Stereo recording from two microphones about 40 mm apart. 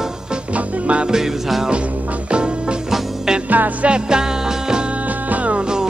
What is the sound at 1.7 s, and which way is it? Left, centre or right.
Music, right.